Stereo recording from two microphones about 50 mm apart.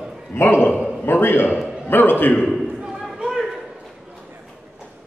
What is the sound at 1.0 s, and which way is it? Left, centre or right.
A man's voice, left.